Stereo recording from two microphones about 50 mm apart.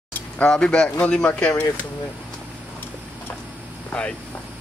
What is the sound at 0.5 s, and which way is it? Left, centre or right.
Speech, centre.